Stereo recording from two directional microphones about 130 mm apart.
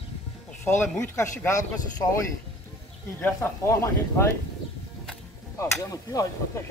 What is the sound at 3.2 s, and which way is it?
Speech, 20° left (ahead or behind).